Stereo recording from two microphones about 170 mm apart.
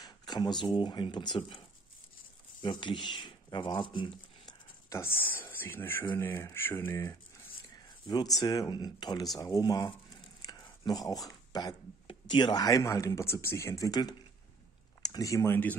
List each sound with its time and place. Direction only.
0.0 s speech: 25° left (ahead or behind)
2.6 s speech: 25° left (ahead or behind)
4.5 s a sound: 15° left (ahead or behind)
6.1 s speech: 15° left (ahead or behind)
8.4 s speech: 20° left (ahead or behind)